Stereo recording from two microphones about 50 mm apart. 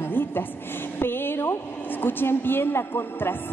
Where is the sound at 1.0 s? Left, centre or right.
Left.